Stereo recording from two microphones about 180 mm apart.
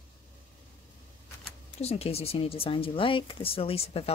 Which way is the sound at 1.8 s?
35° left (ahead or behind).